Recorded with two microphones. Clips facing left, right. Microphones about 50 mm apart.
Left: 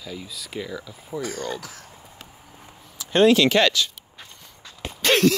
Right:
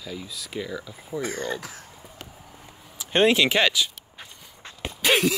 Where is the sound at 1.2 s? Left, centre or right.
Right.